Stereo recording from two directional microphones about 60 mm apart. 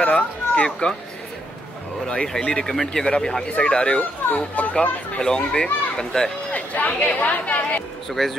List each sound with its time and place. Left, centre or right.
0.0 s speech: left
2.0 s speech: centre
4.6 s speech: left
5.2 s speech: centre
6.5 s speech: left
8.1 s speech: centre